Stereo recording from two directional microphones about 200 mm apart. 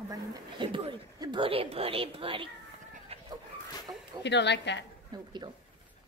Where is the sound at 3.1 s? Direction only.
30° right (ahead or behind).